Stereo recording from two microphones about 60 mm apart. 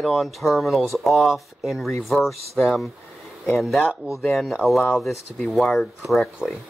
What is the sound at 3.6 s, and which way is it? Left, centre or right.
Speech, centre.